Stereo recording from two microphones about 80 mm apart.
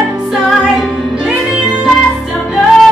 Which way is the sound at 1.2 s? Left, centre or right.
Centre.